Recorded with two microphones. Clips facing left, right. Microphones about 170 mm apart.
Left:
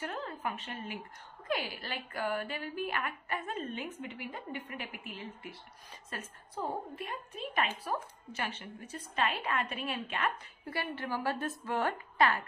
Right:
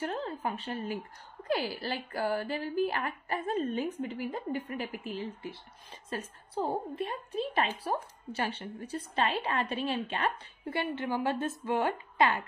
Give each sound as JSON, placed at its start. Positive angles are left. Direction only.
{"t": 0.0, "sound": "a woman's voice", "side_deg": -30}